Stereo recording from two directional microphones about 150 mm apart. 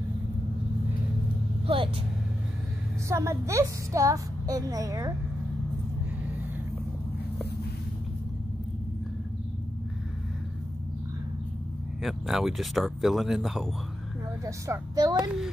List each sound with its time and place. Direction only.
3.1 s a woman's voice: 20° right (ahead or behind)
12.0 s speech: centre (ahead or behind)
14.4 s a woman's voice: 25° right (ahead or behind)